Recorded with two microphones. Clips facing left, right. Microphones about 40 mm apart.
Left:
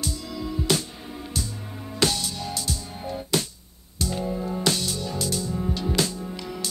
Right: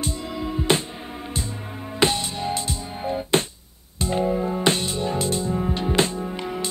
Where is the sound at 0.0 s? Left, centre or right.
Right.